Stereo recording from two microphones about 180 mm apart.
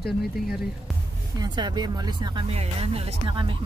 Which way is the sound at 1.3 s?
25° right (ahead or behind).